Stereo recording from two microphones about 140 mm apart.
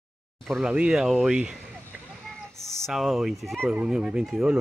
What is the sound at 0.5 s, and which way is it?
Speech, 5° right (ahead or behind).